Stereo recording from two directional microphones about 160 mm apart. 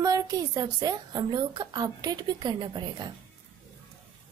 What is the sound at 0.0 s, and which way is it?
A woman's voice, 20° right (ahead or behind).